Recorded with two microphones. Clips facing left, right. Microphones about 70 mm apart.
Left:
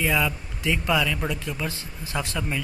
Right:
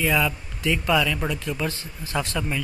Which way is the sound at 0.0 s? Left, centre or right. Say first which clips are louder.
Right 1 dB; centre.